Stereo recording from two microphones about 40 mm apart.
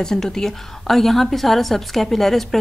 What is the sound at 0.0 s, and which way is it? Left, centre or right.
A woman's voice, centre.